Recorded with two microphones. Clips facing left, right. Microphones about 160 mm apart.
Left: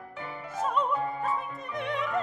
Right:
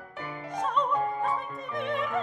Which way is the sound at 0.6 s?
5° left (ahead or behind).